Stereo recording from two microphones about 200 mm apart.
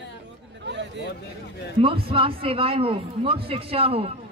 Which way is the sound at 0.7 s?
60° right (ahead or behind).